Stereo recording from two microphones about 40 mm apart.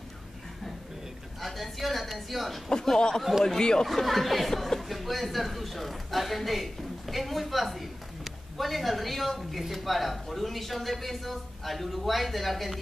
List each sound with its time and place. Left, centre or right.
1.4 s a woman's voice: centre
2.7 s speech: centre
3.8 s speech: centre